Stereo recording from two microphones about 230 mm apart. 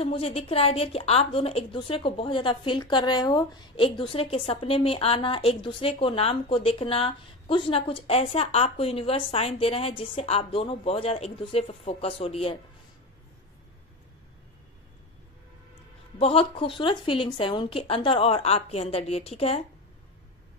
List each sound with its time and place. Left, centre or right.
0.0 s a woman's voice: left
16.2 s a woman's voice: left